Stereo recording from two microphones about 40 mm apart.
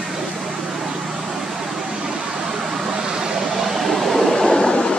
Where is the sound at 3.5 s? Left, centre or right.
Centre.